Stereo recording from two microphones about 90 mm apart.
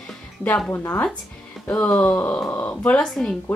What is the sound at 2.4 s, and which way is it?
Speech, 25° left (ahead or behind).